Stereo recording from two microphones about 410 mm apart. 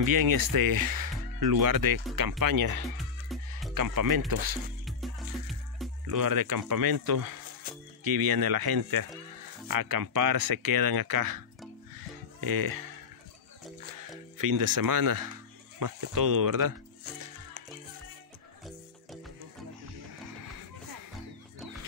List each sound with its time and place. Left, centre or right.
0.0 s speech: right
3.3 s music: centre
3.7 s speech: right
4.8 s music: centre
6.0 s speech: right
7.7 s music: right
8.0 s speech: right
14.4 s speech: right